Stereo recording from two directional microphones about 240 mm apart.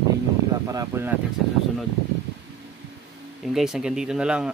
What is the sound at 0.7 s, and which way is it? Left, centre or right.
Speech, centre.